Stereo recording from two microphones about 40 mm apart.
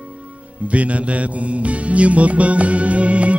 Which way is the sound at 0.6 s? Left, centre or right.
Right.